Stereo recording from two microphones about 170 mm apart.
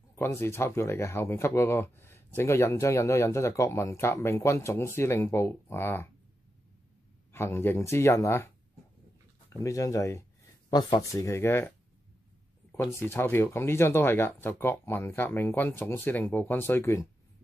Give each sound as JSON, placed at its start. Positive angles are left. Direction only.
{"t": 0.1, "sound": "speech", "side_deg": 15}
{"t": 7.3, "sound": "speech", "side_deg": 15}
{"t": 9.5, "sound": "speech", "side_deg": 20}
{"t": 12.9, "sound": "speech", "side_deg": 15}